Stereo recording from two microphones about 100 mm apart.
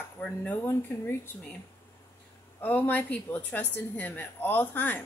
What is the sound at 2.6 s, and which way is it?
Speech, 15° left (ahead or behind).